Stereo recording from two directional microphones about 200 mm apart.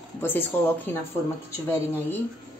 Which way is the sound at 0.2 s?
10° left (ahead or behind).